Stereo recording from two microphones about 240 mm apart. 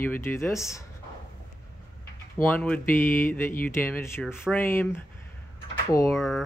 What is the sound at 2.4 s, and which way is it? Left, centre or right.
Speech, centre.